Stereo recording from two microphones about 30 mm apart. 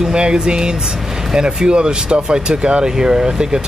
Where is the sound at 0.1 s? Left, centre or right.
Right.